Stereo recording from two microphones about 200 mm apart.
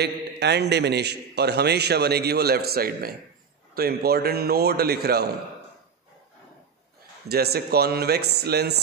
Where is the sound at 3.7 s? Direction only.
50° right (ahead or behind).